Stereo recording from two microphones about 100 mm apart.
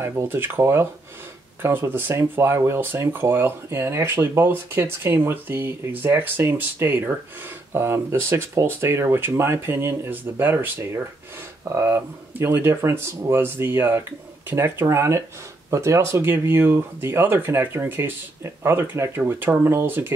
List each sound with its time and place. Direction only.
0.0 s speech: 25° right (ahead or behind)
11.7 s speech: 25° right (ahead or behind)